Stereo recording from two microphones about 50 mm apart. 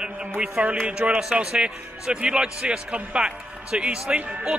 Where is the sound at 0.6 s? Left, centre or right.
Right.